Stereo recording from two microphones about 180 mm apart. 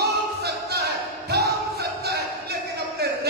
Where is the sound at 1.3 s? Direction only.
60° right (ahead or behind).